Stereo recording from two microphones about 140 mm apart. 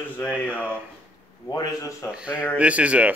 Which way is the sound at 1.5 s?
25° left (ahead or behind).